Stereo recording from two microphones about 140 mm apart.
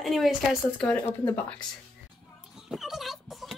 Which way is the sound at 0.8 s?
10° left (ahead or behind).